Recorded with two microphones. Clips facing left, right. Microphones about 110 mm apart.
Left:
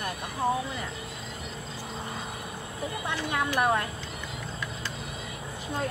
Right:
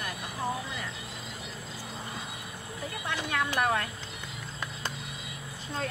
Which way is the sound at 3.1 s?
15° left (ahead or behind).